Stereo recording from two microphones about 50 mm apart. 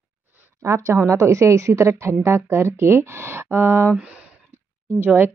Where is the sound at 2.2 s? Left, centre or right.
Right.